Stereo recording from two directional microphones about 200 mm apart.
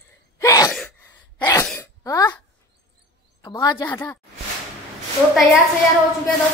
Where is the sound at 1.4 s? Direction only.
15° left (ahead or behind).